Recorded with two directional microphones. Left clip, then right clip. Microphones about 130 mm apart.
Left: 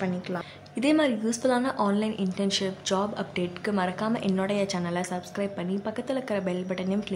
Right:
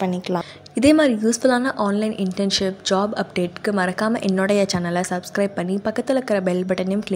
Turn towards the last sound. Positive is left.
turn(degrees=-45)  # may be behind; listen again after turning